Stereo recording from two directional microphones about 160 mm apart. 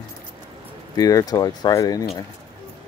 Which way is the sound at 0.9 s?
25° left (ahead or behind).